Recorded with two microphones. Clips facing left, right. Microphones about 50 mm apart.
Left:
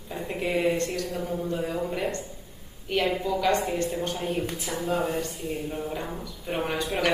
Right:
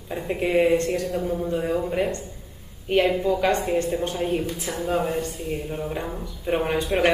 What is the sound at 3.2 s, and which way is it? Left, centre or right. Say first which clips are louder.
Speech: right 3 dB; right.